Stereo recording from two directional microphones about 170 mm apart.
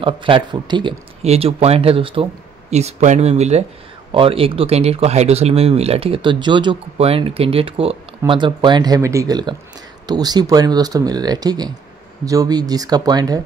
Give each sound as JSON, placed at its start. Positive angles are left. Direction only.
{"t": 0.0, "sound": "speech", "side_deg": -30}
{"t": 2.7, "sound": "speech", "side_deg": -45}